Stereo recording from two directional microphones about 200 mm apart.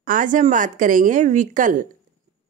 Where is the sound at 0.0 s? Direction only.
40° right (ahead or behind).